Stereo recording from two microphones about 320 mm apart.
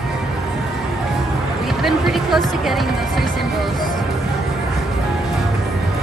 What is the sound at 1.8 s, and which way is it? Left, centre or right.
Speech, centre.